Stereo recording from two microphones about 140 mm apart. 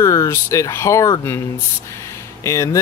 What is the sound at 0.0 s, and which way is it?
Speech, 20° left (ahead or behind).